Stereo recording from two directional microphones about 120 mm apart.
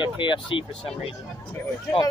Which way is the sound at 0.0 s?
40° left (ahead or behind).